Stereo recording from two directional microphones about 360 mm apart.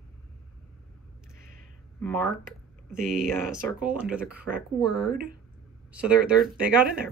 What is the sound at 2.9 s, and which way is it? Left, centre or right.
Speech, centre.